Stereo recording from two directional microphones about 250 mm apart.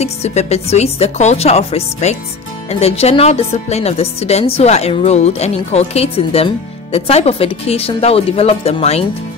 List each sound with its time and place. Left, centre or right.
0.0 s speech: left